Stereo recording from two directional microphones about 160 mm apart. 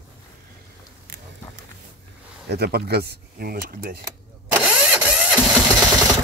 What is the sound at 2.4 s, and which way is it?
Speech, 90° right.